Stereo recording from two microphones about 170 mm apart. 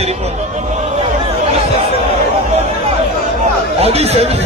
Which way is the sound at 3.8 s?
40° right (ahead or behind).